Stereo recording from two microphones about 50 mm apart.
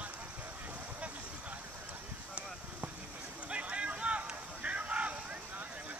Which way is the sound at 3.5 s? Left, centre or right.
Right.